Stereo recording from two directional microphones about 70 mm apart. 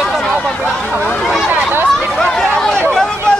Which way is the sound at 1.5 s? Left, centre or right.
Right.